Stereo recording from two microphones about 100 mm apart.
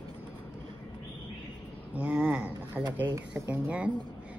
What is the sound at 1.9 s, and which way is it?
A woman's voice, 15° right (ahead or behind).